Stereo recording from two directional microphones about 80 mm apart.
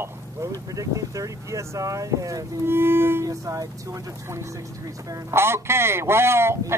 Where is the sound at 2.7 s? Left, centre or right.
Right.